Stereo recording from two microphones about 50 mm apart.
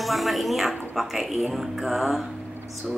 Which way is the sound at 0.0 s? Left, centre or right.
Centre.